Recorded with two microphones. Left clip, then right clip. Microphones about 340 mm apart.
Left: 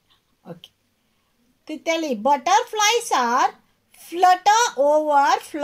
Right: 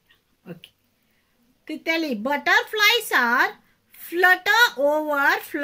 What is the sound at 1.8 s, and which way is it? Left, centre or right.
A child's voice, left.